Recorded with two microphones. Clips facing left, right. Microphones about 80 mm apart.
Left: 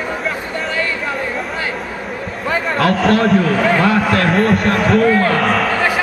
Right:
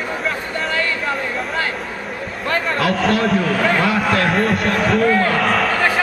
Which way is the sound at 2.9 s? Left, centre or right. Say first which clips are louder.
Left 4 dB; centre.